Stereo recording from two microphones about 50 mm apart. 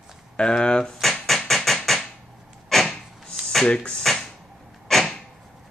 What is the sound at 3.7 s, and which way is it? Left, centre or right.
Speech, centre.